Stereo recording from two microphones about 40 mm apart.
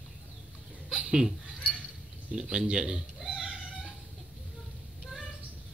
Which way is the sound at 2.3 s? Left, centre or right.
Centre.